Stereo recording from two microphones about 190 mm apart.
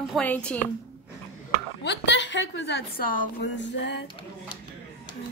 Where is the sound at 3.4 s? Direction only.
70° left (ahead or behind).